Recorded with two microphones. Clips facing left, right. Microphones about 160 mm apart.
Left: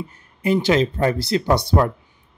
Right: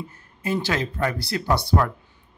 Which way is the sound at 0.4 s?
20° left (ahead or behind).